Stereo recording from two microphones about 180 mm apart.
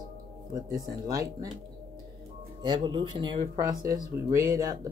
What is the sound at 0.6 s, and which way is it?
Speech, 20° right (ahead or behind).